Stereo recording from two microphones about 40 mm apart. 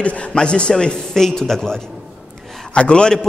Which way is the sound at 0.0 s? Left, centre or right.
Left.